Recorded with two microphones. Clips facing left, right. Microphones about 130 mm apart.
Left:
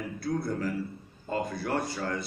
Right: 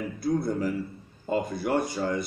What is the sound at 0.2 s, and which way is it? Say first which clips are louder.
A man's voice: right 4 dB; 15° right (ahead or behind).